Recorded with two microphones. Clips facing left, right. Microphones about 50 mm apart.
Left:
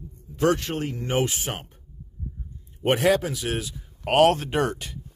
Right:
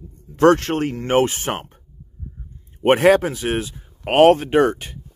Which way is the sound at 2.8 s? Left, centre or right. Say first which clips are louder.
Right 7 dB; right.